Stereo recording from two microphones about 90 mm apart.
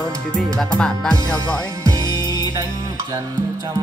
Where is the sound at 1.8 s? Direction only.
40° right (ahead or behind).